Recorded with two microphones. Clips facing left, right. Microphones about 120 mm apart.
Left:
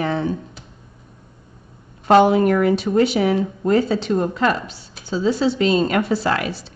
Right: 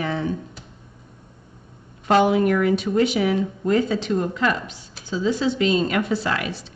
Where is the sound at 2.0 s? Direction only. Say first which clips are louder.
Left 4 dB; 35° left (ahead or behind).